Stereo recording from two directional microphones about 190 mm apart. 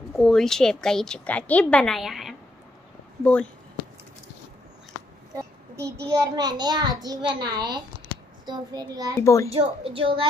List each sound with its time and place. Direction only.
0.1 s a woman's voice: centre (ahead or behind)
5.3 s a child's voice: 15° right (ahead or behind)
9.2 s speech: 15° left (ahead or behind)
9.5 s a child's voice: 30° right (ahead or behind)